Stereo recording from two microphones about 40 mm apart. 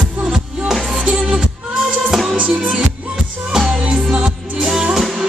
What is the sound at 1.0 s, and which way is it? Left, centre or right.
Music, right.